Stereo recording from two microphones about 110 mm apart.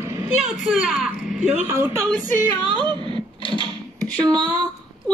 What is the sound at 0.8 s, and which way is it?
Speech, centre (ahead or behind).